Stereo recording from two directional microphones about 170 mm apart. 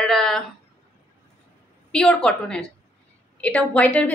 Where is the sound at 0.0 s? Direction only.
5° left (ahead or behind).